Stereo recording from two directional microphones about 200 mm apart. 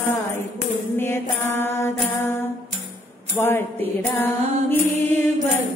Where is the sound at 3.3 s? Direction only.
10° left (ahead or behind).